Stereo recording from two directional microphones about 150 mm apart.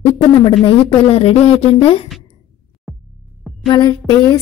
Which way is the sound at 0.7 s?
35° left (ahead or behind).